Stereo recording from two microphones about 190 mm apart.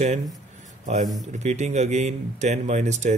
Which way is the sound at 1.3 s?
35° right (ahead or behind).